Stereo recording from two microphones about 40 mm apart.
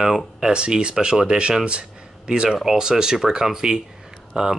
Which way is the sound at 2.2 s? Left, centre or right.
Centre.